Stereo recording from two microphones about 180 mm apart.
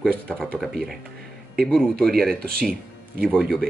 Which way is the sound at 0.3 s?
5° left (ahead or behind).